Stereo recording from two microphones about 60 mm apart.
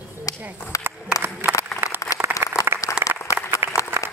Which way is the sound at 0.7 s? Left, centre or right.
Left.